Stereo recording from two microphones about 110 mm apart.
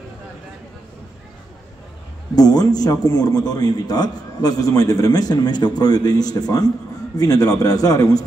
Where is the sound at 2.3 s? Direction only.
35° left (ahead or behind).